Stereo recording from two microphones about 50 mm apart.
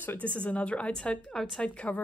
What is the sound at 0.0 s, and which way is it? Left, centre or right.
A woman's voice, left.